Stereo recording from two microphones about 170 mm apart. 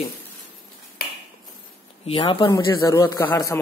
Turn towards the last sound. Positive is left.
turn(degrees=20)  # may be behind; listen again after turning